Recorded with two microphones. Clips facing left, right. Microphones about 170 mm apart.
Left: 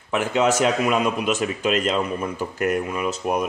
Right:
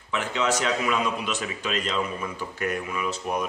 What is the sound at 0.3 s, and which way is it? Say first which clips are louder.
Speech: left 6 dB; 50° left (ahead or behind).